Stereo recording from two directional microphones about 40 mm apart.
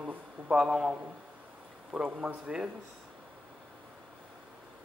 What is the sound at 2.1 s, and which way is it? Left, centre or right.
Speech, right.